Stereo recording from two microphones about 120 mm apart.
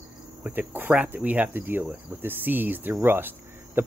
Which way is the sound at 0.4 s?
15° right (ahead or behind).